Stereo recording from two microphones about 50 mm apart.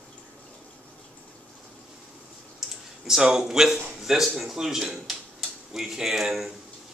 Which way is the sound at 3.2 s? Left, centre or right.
Centre.